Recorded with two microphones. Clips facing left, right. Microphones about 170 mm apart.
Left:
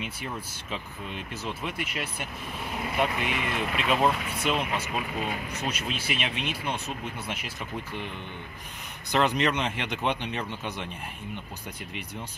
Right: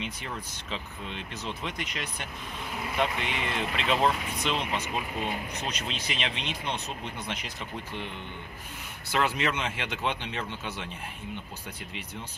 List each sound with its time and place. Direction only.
1.4 s speech: 10° left (ahead or behind)
3.2 s speech: 25° right (ahead or behind)
3.9 s speech: 10° left (ahead or behind)
9.1 s speech: 20° left (ahead or behind)